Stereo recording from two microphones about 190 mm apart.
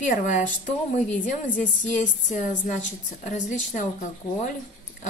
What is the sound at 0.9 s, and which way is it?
A woman's voice, 40° left (ahead or behind).